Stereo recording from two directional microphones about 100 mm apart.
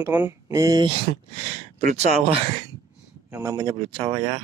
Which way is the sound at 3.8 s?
65° right (ahead or behind).